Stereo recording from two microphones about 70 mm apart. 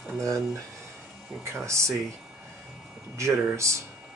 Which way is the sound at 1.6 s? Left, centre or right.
Right.